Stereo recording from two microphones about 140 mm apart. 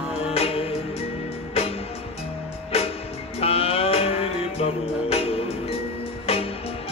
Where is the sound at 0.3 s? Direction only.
45° left (ahead or behind).